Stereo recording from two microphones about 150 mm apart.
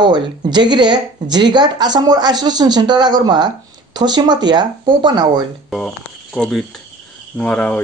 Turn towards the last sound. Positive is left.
turn(degrees=10)  # may be behind; listen again after turning